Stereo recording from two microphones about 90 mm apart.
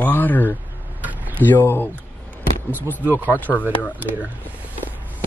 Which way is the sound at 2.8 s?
20° left (ahead or behind).